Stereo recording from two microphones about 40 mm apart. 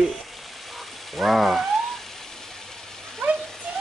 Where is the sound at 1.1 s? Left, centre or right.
Centre.